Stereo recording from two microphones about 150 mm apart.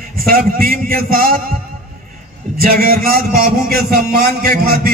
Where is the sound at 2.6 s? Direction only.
80° right.